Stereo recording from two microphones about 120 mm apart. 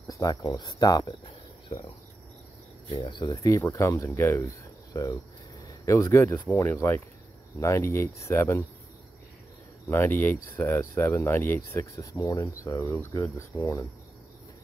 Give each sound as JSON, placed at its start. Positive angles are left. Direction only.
{"t": 0.0, "sound": "speech", "side_deg": 30}
{"t": 3.1, "sound": "speech", "side_deg": 40}
{"t": 3.4, "sound": "speech", "side_deg": 25}
{"t": 9.8, "sound": "speech", "side_deg": 15}